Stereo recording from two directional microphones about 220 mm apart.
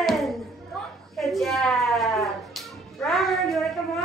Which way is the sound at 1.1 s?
Centre (ahead or behind).